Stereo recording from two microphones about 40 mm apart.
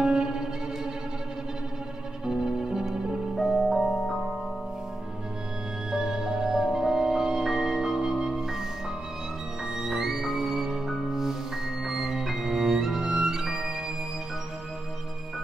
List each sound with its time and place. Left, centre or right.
0.0 s music: centre
2.2 s music: centre
3.8 s music: centre
5.9 s music: centre
9.8 s music: centre